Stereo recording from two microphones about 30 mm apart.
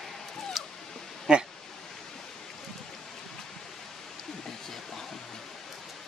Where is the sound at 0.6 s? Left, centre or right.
Centre.